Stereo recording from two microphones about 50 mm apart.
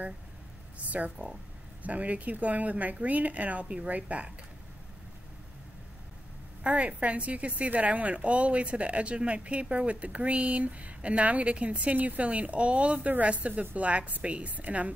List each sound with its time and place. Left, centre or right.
0.7 s a woman's voice: right
6.6 s a woman's voice: right